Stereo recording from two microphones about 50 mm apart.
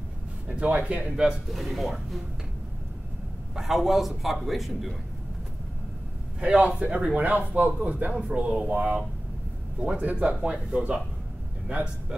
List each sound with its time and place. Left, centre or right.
0.5 s speech: right
1.5 s a man's voice: centre
3.5 s a man's voice: centre
6.4 s speech: right